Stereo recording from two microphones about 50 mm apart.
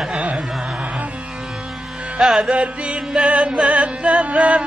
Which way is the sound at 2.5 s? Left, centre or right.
Right.